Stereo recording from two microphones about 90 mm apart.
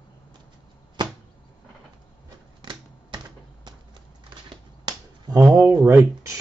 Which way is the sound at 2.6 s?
55° right (ahead or behind).